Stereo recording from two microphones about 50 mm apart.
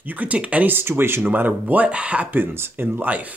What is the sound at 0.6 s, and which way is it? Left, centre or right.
Speech, right.